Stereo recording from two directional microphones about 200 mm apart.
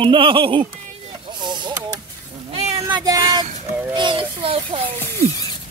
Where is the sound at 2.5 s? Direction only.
30° right (ahead or behind).